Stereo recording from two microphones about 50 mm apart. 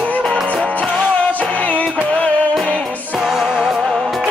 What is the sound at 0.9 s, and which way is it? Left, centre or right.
Music, left.